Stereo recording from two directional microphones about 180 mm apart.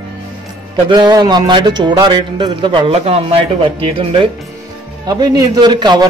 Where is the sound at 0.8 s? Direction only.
25° right (ahead or behind).